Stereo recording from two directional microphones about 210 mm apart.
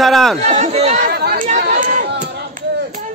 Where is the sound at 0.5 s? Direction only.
30° right (ahead or behind).